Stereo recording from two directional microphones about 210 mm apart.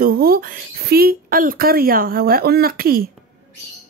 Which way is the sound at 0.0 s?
45° right (ahead or behind).